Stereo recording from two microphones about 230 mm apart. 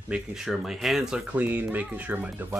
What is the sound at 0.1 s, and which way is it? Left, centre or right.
Speech, centre.